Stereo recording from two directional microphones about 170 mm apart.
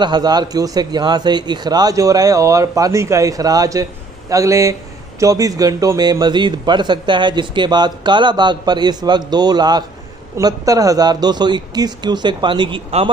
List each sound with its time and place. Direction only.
0.0 s speech: 25° right (ahead or behind)